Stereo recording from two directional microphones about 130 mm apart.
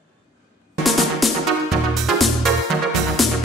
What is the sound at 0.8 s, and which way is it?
Music, centre (ahead or behind).